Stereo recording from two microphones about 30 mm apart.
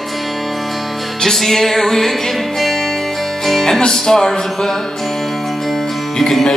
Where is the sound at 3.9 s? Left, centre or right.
Centre.